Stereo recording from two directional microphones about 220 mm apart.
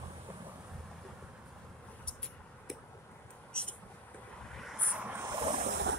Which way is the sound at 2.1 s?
5° left (ahead or behind).